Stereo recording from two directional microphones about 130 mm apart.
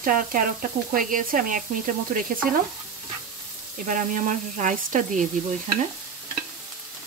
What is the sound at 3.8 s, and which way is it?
Frying, 90° right.